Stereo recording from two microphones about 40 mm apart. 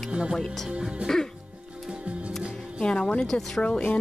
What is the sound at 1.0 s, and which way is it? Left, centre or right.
Music, centre.